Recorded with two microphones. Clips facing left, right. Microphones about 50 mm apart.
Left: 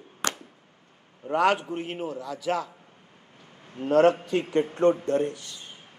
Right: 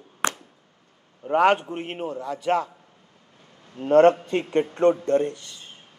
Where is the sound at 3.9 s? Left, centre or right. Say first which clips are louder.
Right 4 dB; right.